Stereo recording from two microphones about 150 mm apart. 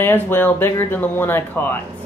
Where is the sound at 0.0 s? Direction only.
15° left (ahead or behind).